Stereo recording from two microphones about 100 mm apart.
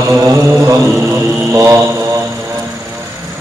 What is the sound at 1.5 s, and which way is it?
Mantra, 25° right (ahead or behind).